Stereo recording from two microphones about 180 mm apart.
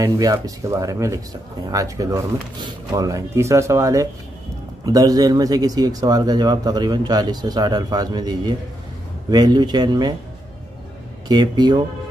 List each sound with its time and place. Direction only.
0.0 s speech: 20° right (ahead or behind)
11.2 s speech: 25° right (ahead or behind)